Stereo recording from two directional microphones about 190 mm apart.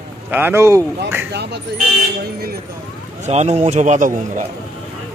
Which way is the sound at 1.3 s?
60° right (ahead or behind).